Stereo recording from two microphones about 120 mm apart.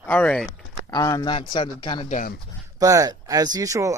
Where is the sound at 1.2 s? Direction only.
40° left (ahead or behind).